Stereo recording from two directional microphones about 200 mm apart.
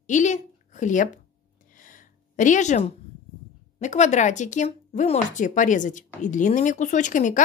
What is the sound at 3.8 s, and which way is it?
Speech, 35° left (ahead or behind).